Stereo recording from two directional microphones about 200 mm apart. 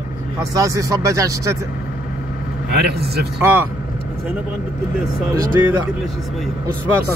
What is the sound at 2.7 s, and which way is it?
Speech, 50° right (ahead or behind).